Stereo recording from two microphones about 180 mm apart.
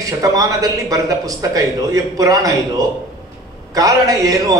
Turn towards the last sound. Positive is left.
turn(degrees=-20)  # may be behind; listen again after turning